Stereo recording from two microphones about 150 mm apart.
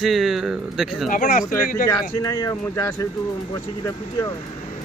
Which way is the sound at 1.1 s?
65° left (ahead or behind).